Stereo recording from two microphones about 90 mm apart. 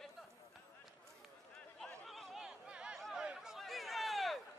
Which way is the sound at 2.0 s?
Centre (ahead or behind).